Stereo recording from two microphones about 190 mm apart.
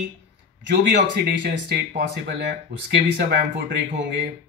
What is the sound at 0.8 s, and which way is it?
Speech, 60° right (ahead or behind).